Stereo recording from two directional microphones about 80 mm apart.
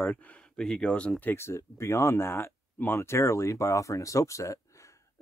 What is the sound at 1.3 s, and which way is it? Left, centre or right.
Speech, left.